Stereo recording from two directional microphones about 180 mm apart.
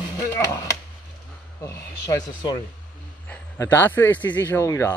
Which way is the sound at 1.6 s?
20° left (ahead or behind).